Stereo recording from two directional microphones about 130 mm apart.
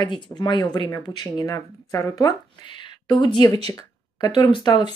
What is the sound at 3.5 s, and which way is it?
Speech, 50° right (ahead or behind).